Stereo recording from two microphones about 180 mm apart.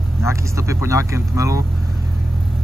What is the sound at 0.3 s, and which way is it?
Speech, 15° right (ahead or behind).